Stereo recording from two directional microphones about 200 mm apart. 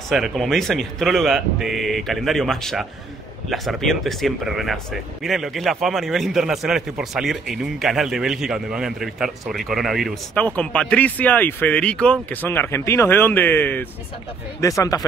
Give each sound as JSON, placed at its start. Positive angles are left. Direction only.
{"t": 0.1, "sound": "a man's voice", "side_deg": 0}